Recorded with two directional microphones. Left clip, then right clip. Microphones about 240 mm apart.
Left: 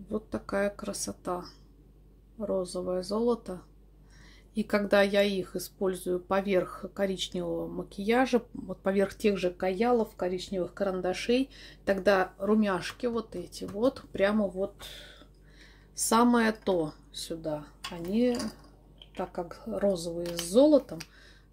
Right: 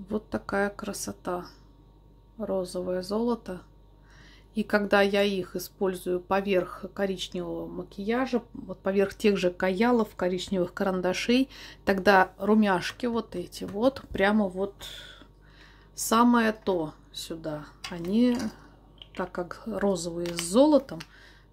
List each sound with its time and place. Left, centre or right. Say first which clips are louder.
0.1 s speech: right 2 dB; centre
9.3 s speech: right 3 dB; right